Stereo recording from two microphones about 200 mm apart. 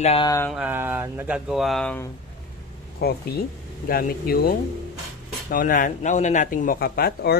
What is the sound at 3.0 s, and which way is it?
Speech, 50° left (ahead or behind).